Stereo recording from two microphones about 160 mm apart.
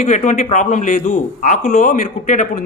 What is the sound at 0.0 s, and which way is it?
A man's voice, 50° left (ahead or behind).